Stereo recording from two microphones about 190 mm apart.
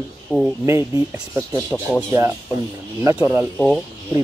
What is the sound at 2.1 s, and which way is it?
Speech, 15° right (ahead or behind).